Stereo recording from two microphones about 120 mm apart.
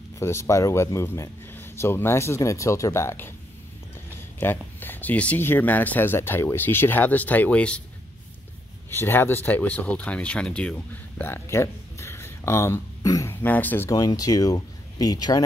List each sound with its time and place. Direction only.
0.2 s speech: 20° left (ahead or behind)
4.4 s speech: 15° left (ahead or behind)
8.9 s speech: 20° left (ahead or behind)
13.8 s speech: 30° left (ahead or behind)